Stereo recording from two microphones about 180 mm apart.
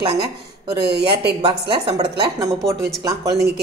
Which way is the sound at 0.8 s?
60° right (ahead or behind).